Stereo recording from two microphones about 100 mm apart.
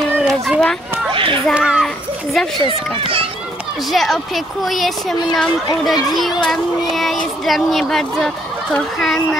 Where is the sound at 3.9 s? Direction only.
Centre (ahead or behind).